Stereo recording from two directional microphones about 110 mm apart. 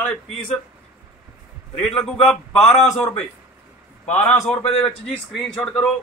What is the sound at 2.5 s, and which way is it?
Speech, 65° left (ahead or behind).